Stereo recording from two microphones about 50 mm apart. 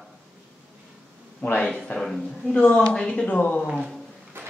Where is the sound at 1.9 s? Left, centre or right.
Left.